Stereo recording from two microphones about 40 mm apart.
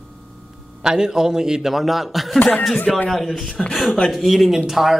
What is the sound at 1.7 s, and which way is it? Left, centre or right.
Speech, centre.